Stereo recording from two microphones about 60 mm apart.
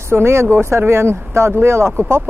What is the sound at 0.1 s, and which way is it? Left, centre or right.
Speech, right.